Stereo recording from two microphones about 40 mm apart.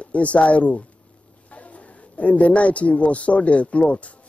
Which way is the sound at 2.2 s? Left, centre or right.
Left.